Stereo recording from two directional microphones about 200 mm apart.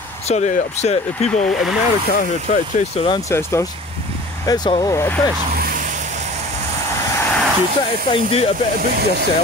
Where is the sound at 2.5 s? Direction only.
35° left (ahead or behind).